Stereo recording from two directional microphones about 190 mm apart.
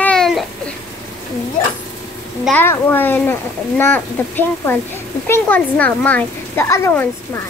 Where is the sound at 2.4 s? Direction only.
10° left (ahead or behind).